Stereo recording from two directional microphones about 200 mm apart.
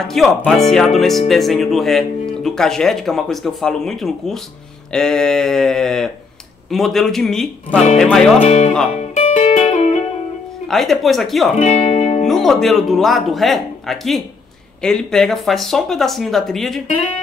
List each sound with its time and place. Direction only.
0.0 s speech: centre (ahead or behind)
8.4 s speech: 30° left (ahead or behind)
8.9 s music: 35° left (ahead or behind)
10.7 s speech: centre (ahead or behind)
11.5 s music: 35° left (ahead or behind)
12.3 s speech: centre (ahead or behind)